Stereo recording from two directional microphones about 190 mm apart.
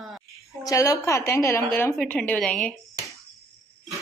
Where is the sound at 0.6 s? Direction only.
15° left (ahead or behind).